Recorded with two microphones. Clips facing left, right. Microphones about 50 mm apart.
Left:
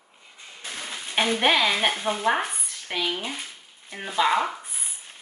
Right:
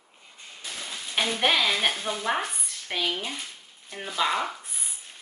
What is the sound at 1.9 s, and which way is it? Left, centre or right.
Stir, left.